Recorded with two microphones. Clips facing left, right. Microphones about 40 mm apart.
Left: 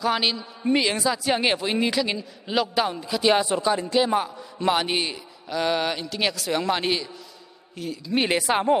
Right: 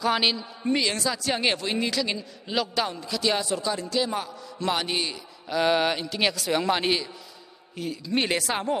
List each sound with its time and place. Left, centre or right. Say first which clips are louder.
0.0 s a man's voice: even; centre
0.7 s speech: left 3 dB; centre
5.5 s a man's voice: right 1 dB; centre
8.2 s speech: left 5 dB; centre